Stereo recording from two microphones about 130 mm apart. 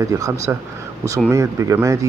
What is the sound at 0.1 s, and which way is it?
Speech, 20° right (ahead or behind).